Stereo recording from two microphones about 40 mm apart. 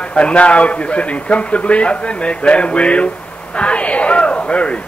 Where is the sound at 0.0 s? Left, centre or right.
Left.